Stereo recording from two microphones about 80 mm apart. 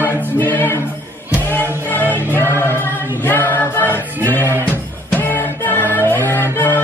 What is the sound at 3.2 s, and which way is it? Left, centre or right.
A capella, left.